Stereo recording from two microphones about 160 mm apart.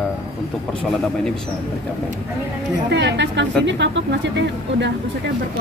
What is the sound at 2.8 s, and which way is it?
Speech, 90° right.